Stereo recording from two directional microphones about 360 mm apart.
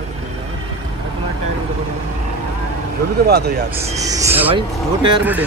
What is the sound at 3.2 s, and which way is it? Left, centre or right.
Speech, right.